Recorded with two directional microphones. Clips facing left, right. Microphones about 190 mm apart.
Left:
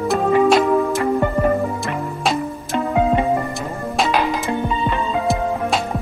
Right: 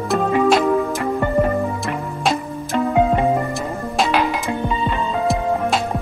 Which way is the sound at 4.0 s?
Centre (ahead or behind).